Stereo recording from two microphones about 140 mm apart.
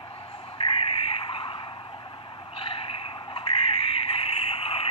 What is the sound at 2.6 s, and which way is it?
Frog, 40° left (ahead or behind).